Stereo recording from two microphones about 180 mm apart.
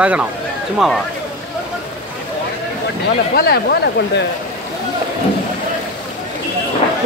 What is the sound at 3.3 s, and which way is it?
Speech, 60° left (ahead or behind).